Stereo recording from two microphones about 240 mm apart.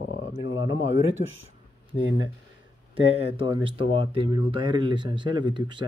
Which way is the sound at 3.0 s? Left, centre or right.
Right.